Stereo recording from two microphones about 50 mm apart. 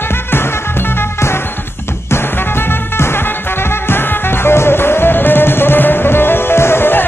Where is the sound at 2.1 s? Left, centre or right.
Left.